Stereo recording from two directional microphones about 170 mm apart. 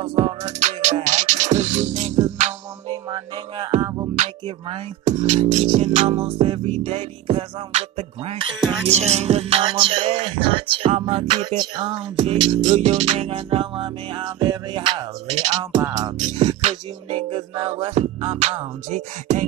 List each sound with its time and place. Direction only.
0.0 s music: 30° right (ahead or behind)
3.1 s music: 25° right (ahead or behind)
4.2 s music: 45° right (ahead or behind)
6.0 s music: 30° right (ahead or behind)
12.7 s music: 40° right (ahead or behind)
16.6 s music: 30° right (ahead or behind)